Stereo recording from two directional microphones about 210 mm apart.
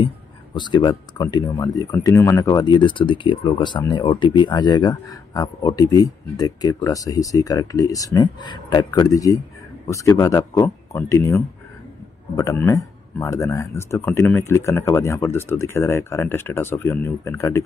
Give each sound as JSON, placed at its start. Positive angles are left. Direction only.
{"t": 0.6, "sound": "speech", "side_deg": 20}